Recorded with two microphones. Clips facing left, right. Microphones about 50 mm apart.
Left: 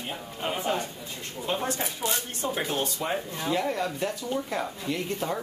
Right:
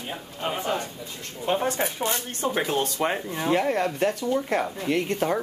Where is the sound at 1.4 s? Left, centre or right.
Right.